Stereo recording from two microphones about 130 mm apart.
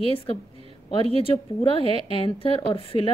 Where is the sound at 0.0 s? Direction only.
45° left (ahead or behind).